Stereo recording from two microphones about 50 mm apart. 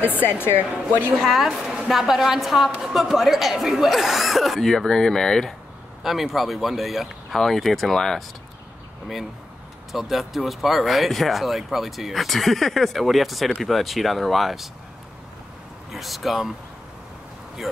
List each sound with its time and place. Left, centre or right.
0.0 s speech: left
1.1 s speech: centre
1.5 s a woman's voice: centre
6.0 s speech: centre
9.9 s speech: centre
15.9 s speech: centre